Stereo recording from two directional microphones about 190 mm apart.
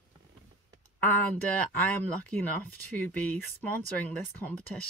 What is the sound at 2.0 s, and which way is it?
Speech, 10° left (ahead or behind).